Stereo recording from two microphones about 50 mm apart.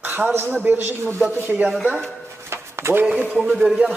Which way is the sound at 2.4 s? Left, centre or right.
Right.